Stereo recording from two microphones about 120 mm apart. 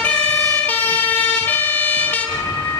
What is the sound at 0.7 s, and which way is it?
Emergency vehicle, 15° left (ahead or behind).